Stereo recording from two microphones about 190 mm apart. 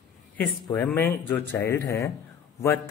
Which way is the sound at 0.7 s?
10° left (ahead or behind).